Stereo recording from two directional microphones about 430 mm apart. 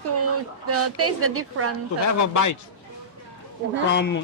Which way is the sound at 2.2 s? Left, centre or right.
Left.